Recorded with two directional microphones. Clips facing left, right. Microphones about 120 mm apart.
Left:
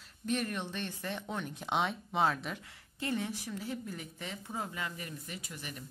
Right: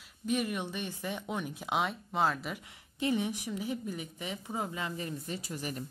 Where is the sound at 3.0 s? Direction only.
15° right (ahead or behind).